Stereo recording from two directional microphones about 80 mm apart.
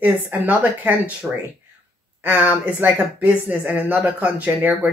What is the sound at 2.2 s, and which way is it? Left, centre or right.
Speech, right.